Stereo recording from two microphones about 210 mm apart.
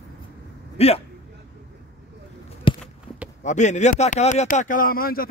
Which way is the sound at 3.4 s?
35° left (ahead or behind).